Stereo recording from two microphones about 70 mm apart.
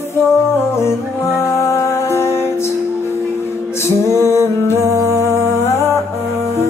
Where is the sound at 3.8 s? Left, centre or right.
Left.